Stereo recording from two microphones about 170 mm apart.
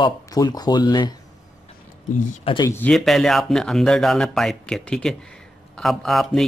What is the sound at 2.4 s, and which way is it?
Speech, 25° left (ahead or behind).